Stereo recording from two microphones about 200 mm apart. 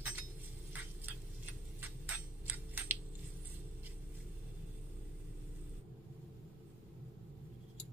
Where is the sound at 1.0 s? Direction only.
10° right (ahead or behind).